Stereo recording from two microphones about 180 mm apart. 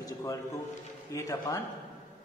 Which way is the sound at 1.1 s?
20° left (ahead or behind).